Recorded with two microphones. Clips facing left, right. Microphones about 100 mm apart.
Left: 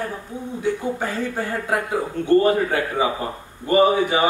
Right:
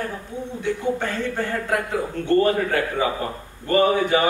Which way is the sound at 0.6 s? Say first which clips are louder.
Even; 10° left (ahead or behind).